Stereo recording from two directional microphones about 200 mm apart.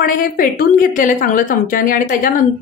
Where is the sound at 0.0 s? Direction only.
45° left (ahead or behind).